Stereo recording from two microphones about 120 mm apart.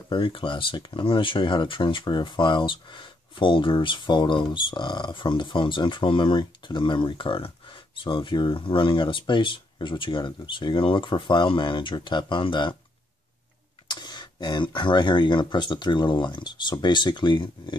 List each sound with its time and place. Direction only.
0.1 s speech: 45° left (ahead or behind)
13.8 s speech: 40° left (ahead or behind)